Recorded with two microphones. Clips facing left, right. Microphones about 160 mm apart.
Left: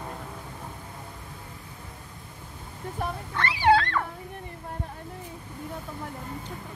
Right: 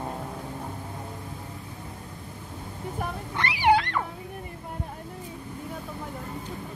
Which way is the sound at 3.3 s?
15° right (ahead or behind).